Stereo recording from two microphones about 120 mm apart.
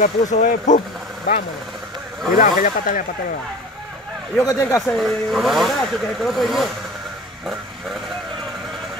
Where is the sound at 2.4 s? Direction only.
90° left.